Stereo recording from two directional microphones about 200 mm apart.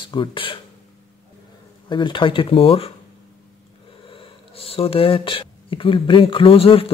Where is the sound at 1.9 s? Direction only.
25° left (ahead or behind).